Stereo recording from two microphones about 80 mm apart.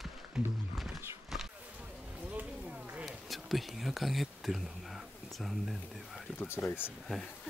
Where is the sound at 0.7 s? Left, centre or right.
Centre.